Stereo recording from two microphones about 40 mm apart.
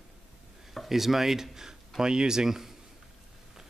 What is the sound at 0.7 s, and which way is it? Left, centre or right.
Speech, centre.